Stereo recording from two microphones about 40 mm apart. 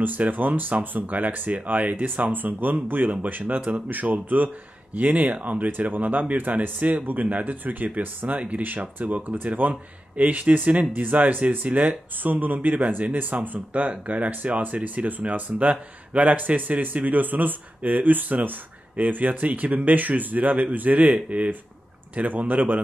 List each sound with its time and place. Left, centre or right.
0.0 s speech: right
8.4 s speech: right
8.6 s speech: right